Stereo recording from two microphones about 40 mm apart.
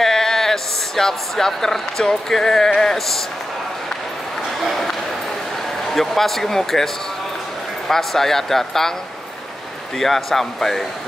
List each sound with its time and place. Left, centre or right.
0.0 s a sound: centre
2.0 s speech: centre
5.9 s speech: centre
7.9 s speech: centre
9.9 s speech: centre